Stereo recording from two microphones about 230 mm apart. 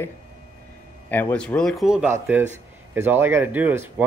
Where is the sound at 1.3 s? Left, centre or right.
Centre.